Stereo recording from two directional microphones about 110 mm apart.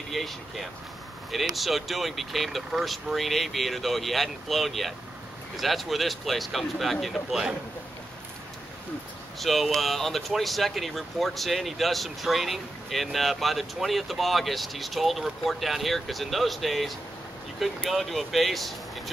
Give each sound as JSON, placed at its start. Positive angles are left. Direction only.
{"t": 0.1, "sound": "speech", "side_deg": 0}
{"t": 9.4, "sound": "speech", "side_deg": 0}